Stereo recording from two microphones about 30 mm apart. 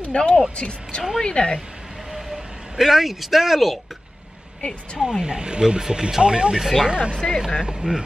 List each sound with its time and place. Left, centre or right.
0.1 s speech: left
2.1 s vehicle: centre
5.2 s speech: right
6.5 s speech: centre
6.9 s speech: right
7.2 s speech: centre
7.8 s speech: right